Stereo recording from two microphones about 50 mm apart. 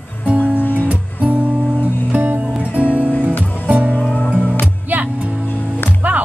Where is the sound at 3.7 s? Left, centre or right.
Right.